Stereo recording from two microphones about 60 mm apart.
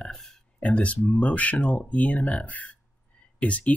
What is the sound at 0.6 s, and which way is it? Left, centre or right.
Speech, left.